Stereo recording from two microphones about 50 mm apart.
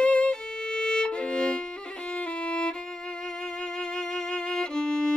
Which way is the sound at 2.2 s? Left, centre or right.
Left.